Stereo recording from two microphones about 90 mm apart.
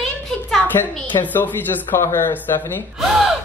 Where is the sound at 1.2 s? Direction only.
20° left (ahead or behind).